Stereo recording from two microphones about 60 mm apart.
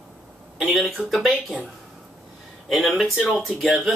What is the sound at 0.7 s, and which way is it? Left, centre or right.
Speech, centre.